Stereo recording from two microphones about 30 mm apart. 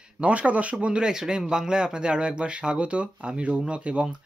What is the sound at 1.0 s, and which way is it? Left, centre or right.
Speech, right.